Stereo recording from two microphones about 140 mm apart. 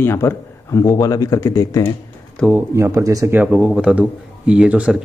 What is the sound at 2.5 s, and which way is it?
Speech, 20° right (ahead or behind).